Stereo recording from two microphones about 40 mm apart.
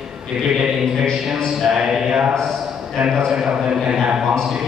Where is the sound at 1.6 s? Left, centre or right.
Centre.